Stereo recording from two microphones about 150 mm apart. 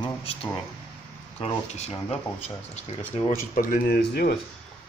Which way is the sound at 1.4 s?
45° left (ahead or behind).